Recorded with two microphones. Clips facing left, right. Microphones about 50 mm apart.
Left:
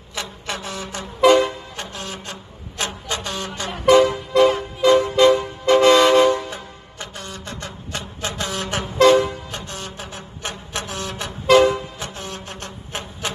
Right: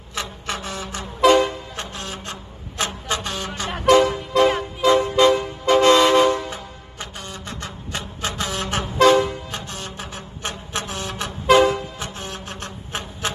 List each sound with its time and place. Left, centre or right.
0.1 s vehicle: centre
2.8 s vehicle: centre
3.8 s music: centre
5.7 s toot: centre
8.4 s vehicle: centre
12.6 s a sound: centre